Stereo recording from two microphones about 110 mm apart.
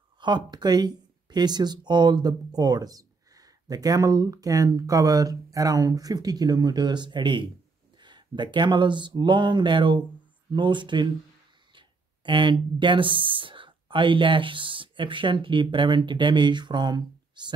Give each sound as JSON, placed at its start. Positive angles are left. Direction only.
{"t": 0.2, "sound": "speech", "side_deg": -40}